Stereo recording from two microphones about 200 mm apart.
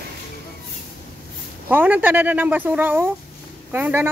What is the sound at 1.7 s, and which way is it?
Speech, 10° right (ahead or behind).